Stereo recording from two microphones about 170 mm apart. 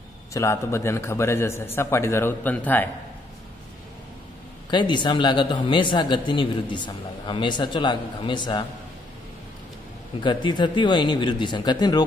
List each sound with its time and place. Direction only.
0.3 s a man's voice: 15° left (ahead or behind)
4.6 s speech: 25° left (ahead or behind)
10.2 s speech: 25° left (ahead or behind)